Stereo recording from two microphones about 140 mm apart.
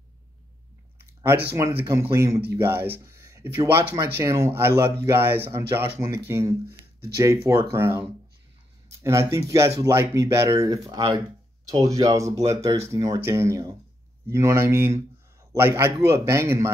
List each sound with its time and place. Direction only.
1.2 s speech: 15° right (ahead or behind)